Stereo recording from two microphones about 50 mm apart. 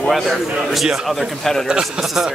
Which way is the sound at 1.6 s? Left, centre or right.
Centre.